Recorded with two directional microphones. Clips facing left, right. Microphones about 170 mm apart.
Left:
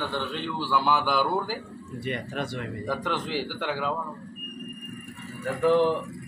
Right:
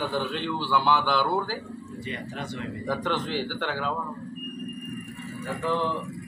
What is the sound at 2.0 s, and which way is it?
Speech, 60° left (ahead or behind).